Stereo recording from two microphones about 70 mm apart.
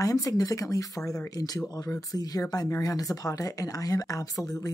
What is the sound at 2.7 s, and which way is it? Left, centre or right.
Speech, left.